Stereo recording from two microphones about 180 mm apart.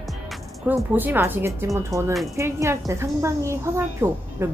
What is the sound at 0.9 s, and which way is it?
A woman's voice, 10° right (ahead or behind).